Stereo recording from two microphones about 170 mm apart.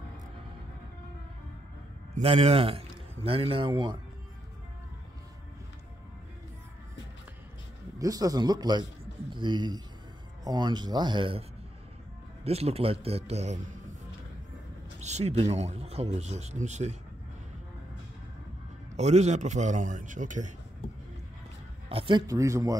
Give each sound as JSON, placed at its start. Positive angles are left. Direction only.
{"t": 2.2, "sound": "a man's voice", "side_deg": -35}
{"t": 8.0, "sound": "speech", "side_deg": -20}
{"t": 12.4, "sound": "a man's voice", "side_deg": -35}
{"t": 15.0, "sound": "a man's voice", "side_deg": -40}
{"t": 18.9, "sound": "a man's voice", "side_deg": -40}
{"t": 21.8, "sound": "speech", "side_deg": -30}